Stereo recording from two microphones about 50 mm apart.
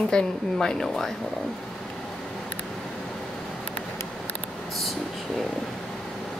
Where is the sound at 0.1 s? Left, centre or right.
Centre.